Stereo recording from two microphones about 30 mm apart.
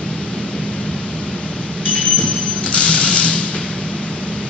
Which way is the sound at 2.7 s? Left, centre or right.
Left.